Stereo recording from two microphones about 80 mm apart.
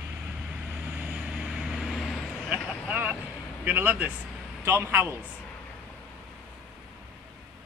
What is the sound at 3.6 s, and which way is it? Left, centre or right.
Speech, centre.